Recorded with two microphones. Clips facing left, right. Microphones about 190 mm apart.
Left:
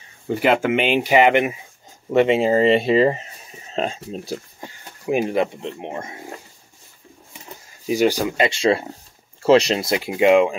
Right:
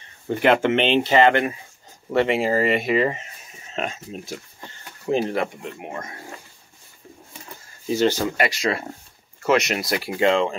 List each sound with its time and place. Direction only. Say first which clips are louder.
0.3 s speech: even; 5° left (ahead or behind); by 4.4 s 35° left (ahead or behind)
4.6 s speech: left 4 dB; 15° left (ahead or behind)
7.8 s speech: left 2 dB; 15° left (ahead or behind)
8.5 s speech: left 6 dB; 25° left (ahead or behind)